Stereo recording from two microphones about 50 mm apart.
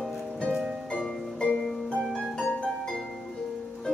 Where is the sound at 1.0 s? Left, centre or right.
Centre.